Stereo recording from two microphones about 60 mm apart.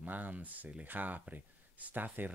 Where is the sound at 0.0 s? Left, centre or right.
Right.